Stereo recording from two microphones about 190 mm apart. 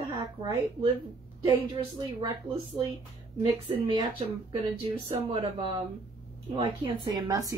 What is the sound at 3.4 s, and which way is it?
Speech, 25° right (ahead or behind).